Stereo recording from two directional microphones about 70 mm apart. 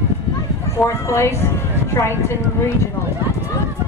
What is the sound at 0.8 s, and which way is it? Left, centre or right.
A woman's voice, left.